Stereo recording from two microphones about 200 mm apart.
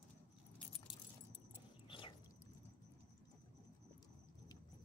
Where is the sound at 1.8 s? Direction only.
25° left (ahead or behind).